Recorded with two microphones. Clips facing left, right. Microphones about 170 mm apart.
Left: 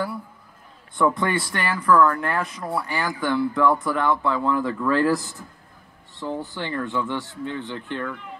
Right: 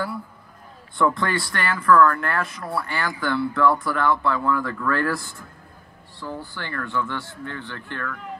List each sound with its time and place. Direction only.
0.9 s speech: 15° left (ahead or behind)